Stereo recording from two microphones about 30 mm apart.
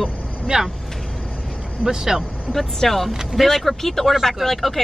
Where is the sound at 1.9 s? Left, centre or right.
Centre.